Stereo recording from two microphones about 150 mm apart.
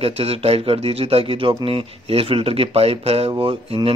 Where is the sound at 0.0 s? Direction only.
40° right (ahead or behind).